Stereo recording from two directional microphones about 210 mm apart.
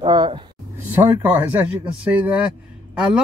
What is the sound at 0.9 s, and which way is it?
A man's voice, 10° right (ahead or behind).